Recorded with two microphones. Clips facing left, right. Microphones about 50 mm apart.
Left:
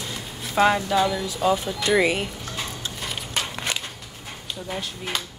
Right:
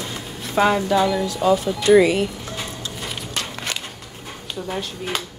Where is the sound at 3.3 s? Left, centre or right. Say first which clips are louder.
Left 1 dB; centre.